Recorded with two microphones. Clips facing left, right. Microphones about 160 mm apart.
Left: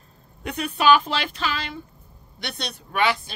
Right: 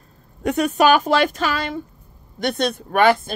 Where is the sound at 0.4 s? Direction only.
45° right (ahead or behind).